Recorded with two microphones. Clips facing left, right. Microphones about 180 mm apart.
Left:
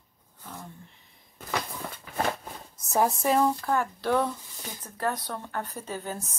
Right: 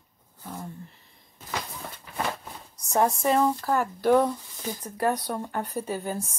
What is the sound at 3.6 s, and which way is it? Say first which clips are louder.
A woman's voice: right 4 dB; 10° right (ahead or behind).